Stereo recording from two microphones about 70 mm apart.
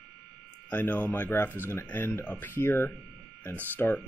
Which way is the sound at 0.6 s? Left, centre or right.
Left.